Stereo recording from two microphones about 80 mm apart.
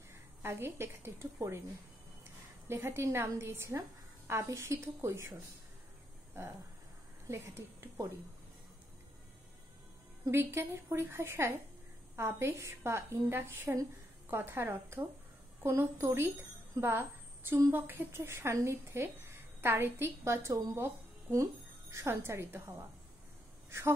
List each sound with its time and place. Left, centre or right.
0.1 s a woman's voice: right
2.7 s speech: right
7.2 s speech: right
10.3 s a woman's voice: right
21.9 s speech: right